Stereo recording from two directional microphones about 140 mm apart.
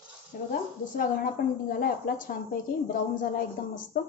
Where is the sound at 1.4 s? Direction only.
90° left.